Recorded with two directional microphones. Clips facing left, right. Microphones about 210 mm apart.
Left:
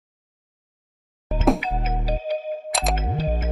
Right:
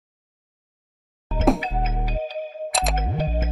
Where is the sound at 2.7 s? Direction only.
Centre (ahead or behind).